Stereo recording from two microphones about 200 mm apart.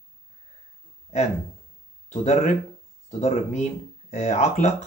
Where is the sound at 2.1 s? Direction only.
35° left (ahead or behind).